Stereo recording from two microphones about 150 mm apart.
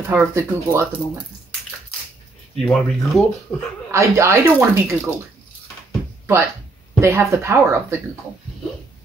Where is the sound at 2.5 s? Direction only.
5° left (ahead or behind).